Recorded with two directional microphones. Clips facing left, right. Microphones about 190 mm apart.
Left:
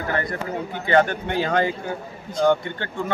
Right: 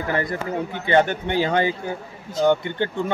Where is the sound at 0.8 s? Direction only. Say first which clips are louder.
Even; 20° right (ahead or behind).